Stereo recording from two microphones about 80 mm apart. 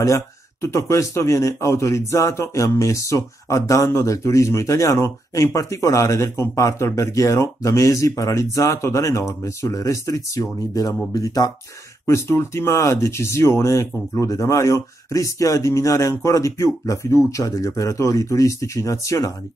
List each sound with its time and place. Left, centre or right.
0.0 s a man's voice: left
12.1 s a man's voice: left